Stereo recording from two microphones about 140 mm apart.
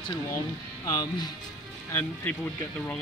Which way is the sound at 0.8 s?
30° left (ahead or behind).